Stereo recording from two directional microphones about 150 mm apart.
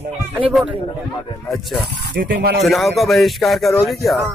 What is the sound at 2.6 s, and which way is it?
A man's voice, centre (ahead or behind).